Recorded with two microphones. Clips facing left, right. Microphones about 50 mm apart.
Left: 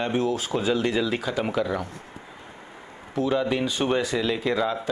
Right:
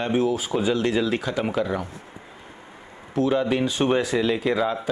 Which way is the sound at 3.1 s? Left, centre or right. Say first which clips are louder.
Right 2 dB; centre.